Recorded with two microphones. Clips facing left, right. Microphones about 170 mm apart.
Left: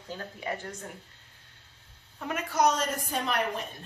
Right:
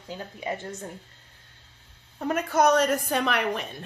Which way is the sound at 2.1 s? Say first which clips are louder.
Right 5 dB; 40° right (ahead or behind).